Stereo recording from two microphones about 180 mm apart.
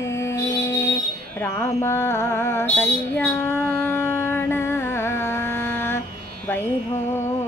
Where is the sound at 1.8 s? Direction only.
15° left (ahead or behind).